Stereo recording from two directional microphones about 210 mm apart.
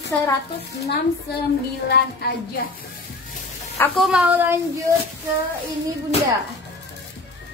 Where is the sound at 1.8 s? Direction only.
50° left (ahead or behind).